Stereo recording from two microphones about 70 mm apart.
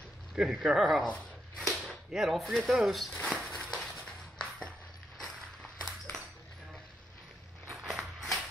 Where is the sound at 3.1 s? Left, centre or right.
Centre.